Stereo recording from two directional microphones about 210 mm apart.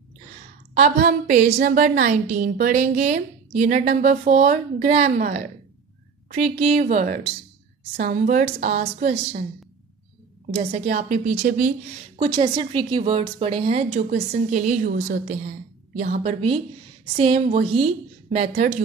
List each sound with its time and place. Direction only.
0.7 s a woman's voice: 35° right (ahead or behind)
6.6 s a woman's voice: 30° right (ahead or behind)
10.5 s a woman's voice: 35° right (ahead or behind)
12.2 s a woman's voice: 25° right (ahead or behind)